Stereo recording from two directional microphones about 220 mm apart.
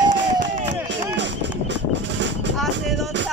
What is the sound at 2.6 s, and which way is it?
Music, centre (ahead or behind).